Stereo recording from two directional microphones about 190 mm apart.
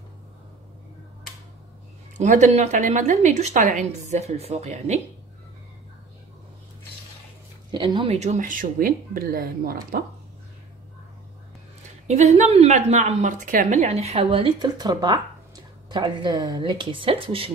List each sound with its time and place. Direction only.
2.1 s a woman's voice: 40° right (ahead or behind)
7.7 s speech: 25° right (ahead or behind); by 10.0 s 50° right (ahead or behind)
12.1 s a woman's voice: 35° right (ahead or behind)